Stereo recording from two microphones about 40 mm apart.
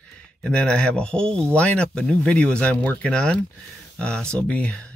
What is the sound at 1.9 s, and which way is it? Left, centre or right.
Speech, centre.